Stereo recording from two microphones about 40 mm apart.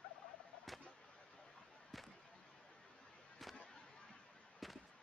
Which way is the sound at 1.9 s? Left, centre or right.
Centre.